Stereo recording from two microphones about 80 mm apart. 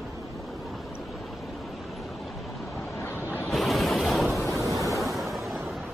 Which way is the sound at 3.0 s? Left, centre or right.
Left.